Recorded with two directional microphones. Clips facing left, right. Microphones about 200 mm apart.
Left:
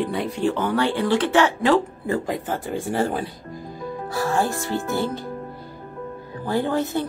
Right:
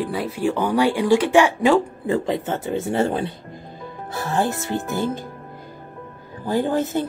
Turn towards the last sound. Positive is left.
turn(degrees=-15)  # may be behind; listen again after turning